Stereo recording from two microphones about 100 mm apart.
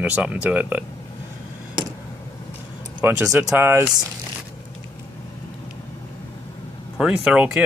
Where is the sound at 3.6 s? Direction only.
25° right (ahead or behind).